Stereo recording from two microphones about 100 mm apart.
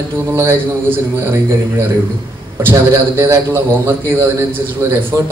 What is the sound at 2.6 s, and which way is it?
A man's voice, 25° right (ahead or behind).